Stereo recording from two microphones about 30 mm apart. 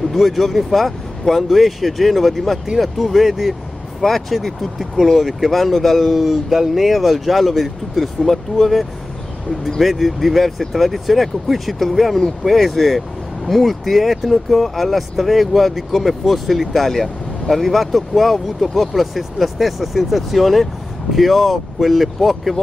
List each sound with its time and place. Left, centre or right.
0.1 s speech: centre
4.0 s speech: centre